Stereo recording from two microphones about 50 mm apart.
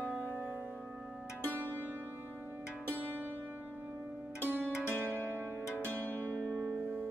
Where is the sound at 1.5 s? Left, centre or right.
Right.